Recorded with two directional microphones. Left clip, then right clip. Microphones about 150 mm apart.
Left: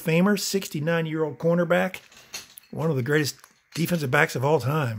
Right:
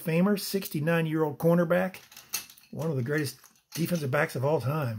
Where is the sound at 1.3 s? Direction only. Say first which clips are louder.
Left 2 dB; 15° right (ahead or behind).